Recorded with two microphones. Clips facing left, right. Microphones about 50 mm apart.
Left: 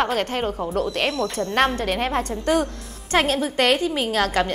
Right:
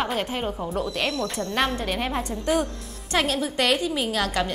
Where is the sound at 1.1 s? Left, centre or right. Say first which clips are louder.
Left 3 dB; centre.